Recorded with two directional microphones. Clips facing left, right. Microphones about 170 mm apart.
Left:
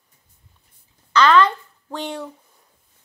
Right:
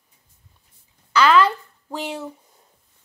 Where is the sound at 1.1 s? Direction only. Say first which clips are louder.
Left 1 dB; 10° right (ahead or behind).